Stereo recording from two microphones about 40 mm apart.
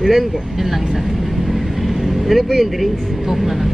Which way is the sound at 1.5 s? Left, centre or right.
Centre.